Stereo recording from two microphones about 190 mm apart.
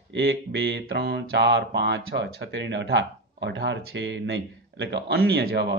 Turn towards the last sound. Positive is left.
turn(degrees=-60)  # may be behind; listen again after turning